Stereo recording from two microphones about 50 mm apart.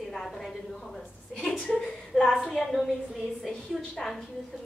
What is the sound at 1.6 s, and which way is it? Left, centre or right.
Speech, centre.